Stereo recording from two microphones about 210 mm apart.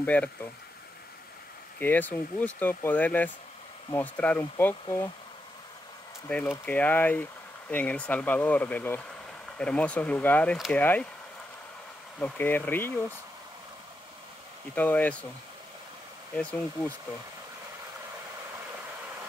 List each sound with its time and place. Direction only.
0.0 s speech: 5° left (ahead or behind)
1.8 s speech: 10° left (ahead or behind)
6.2 s speech: 10° left (ahead or behind)
12.2 s speech: 10° left (ahead or behind)
14.8 s speech: 10° left (ahead or behind)
16.3 s speech: 5° left (ahead or behind)